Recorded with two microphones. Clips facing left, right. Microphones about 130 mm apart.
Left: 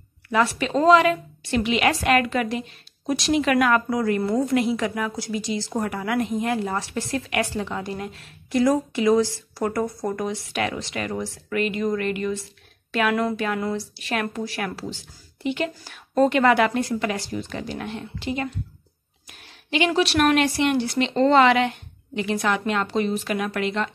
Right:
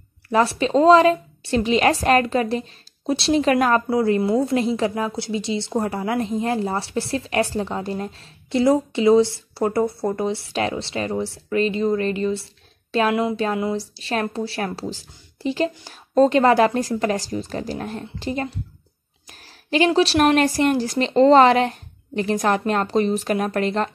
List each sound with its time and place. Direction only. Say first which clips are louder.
0.3 s a woman's voice: right 3 dB; 35° right (ahead or behind)
13.1 s a woman's voice: right 2 dB; 20° right (ahead or behind)
13.9 s a woman's voice: right 3 dB; 30° right (ahead or behind)